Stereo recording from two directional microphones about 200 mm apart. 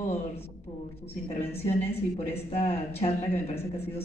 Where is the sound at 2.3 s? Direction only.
30° left (ahead or behind).